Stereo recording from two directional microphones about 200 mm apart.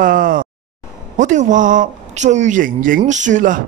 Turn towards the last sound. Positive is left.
turn(degrees=-40)  # may be behind; listen again after turning